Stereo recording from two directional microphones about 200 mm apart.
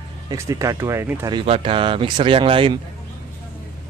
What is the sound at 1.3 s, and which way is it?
Speech, 25° right (ahead or behind).